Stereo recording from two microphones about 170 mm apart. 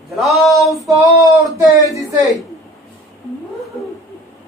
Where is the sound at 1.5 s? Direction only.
20° right (ahead or behind).